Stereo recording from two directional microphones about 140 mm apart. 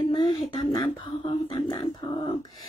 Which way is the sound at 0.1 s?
40° left (ahead or behind).